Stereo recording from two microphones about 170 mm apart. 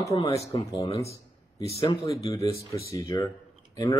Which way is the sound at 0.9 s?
20° left (ahead or behind).